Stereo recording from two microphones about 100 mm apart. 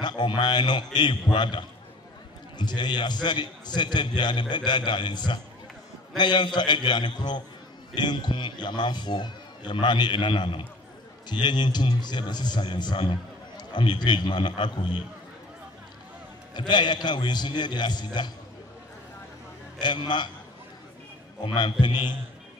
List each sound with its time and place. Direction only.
0.0 s a man's voice: 50° left (ahead or behind)
16.5 s a man's voice: 50° left (ahead or behind)
19.8 s a man's voice: 50° left (ahead or behind)
21.5 s a man's voice: 50° left (ahead or behind)